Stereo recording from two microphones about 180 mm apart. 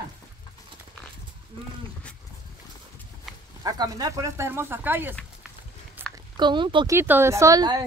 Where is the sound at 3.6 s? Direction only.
20° right (ahead or behind).